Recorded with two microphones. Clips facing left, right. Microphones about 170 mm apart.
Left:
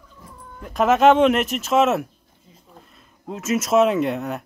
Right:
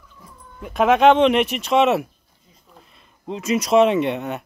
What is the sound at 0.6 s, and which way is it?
Speech, centre (ahead or behind).